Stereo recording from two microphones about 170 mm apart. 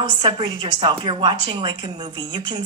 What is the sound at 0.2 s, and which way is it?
A woman's voice, 30° right (ahead or behind).